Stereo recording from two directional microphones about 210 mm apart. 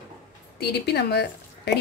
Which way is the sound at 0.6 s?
50° left (ahead or behind).